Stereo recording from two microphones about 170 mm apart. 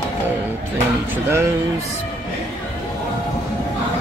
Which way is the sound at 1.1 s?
15° right (ahead or behind).